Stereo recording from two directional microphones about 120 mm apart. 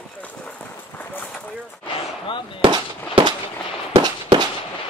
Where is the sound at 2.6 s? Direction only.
40° right (ahead or behind).